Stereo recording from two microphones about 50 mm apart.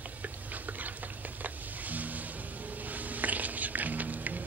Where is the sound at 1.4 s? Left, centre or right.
Right.